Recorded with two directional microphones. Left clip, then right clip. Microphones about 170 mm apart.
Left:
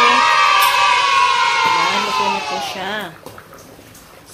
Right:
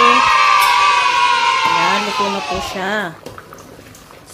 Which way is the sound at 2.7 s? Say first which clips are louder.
Right 4 dB; 25° right (ahead or behind).